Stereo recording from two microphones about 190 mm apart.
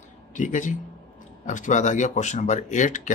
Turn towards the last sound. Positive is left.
turn(degrees=40)  # may be behind; listen again after turning